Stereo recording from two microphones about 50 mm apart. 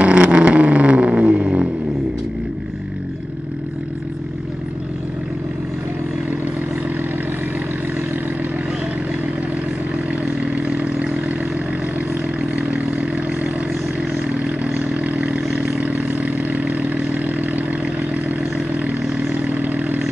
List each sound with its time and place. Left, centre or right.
0.0 s vehicle: right
10.1 s vehicle: right
12.4 s vehicle: right